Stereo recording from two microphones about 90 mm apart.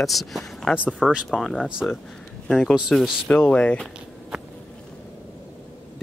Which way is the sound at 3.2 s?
15° left (ahead or behind).